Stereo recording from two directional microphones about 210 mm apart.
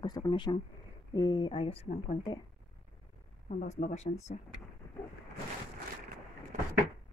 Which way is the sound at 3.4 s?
35° left (ahead or behind).